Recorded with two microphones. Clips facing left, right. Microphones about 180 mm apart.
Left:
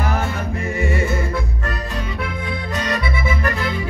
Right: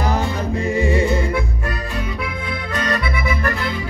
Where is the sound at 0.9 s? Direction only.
15° right (ahead or behind).